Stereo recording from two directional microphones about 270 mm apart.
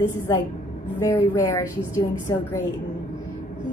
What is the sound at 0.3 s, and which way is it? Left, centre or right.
A woman's voice, centre.